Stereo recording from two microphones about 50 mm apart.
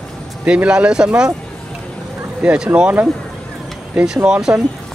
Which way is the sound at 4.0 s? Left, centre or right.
Centre.